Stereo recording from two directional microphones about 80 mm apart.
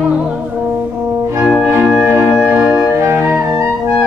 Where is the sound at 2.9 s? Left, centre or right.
Right.